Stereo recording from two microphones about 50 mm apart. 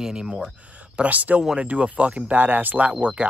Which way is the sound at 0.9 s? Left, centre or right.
Right.